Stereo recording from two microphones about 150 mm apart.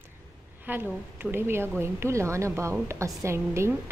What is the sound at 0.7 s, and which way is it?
A woman's voice, 15° right (ahead or behind).